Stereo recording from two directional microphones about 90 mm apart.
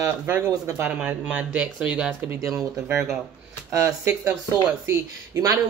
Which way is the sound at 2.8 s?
25° right (ahead or behind).